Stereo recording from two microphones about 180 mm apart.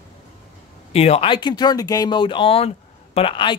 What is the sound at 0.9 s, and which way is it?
Speech, 35° left (ahead or behind).